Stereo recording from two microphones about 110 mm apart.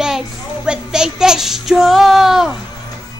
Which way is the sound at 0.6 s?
5° right (ahead or behind).